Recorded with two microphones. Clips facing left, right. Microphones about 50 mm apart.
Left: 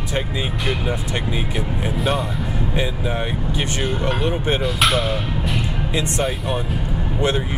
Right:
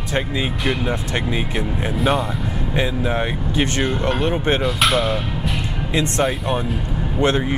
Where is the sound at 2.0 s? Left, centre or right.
Centre.